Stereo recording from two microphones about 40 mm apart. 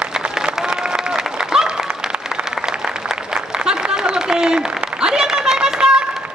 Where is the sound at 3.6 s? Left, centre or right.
Centre.